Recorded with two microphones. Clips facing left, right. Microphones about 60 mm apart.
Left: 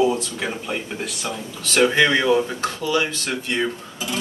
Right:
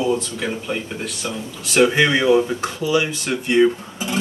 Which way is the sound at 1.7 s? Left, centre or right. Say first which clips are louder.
Right 1 dB; centre.